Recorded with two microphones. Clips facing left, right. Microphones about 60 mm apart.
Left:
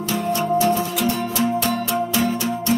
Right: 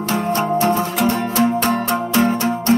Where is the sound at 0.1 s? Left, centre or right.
Right.